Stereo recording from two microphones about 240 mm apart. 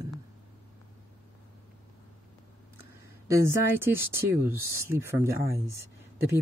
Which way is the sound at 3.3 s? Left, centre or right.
Centre.